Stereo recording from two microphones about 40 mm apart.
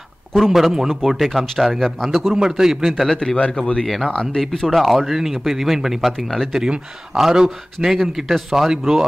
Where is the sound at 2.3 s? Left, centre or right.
Centre.